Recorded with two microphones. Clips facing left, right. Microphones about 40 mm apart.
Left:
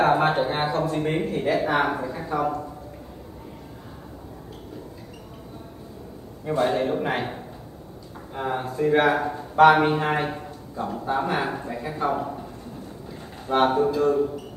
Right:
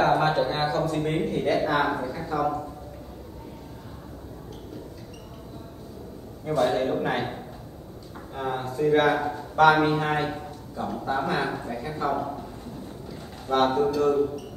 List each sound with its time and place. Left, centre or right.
0.0 s speech: centre
6.4 s speech: centre
13.5 s speech: left